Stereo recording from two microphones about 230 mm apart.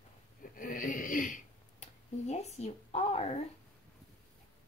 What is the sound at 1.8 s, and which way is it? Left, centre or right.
Speech, left.